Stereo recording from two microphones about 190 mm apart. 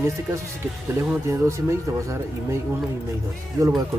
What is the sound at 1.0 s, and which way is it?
Speech, 15° right (ahead or behind).